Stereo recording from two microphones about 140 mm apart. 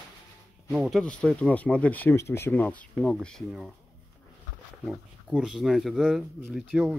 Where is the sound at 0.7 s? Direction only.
Centre (ahead or behind).